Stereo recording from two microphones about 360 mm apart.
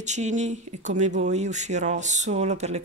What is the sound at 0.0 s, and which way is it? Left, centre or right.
Speech, centre.